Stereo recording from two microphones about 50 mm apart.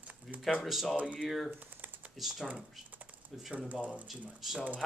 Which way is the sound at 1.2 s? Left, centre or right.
Centre.